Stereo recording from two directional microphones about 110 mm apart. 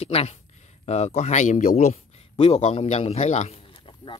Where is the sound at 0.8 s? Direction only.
80° left.